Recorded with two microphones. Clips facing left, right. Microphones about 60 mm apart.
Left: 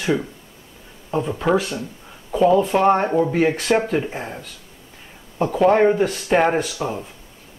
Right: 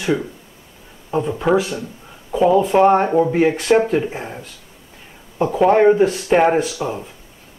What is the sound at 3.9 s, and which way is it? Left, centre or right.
Speech, centre.